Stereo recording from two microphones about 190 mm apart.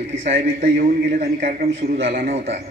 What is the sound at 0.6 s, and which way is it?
A man's voice, 60° right (ahead or behind).